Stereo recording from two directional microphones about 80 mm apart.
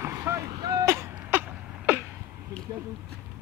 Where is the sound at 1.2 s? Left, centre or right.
Right.